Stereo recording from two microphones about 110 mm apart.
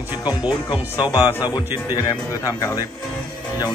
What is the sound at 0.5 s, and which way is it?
Speech, 45° left (ahead or behind).